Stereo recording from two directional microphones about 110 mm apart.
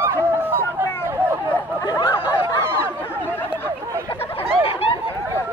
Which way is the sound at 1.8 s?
35° left (ahead or behind).